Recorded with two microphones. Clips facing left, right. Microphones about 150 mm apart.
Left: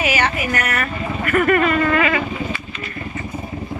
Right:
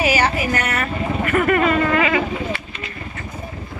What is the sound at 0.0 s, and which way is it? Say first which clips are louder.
Speech: right 2 dB; 35° right (ahead or behind).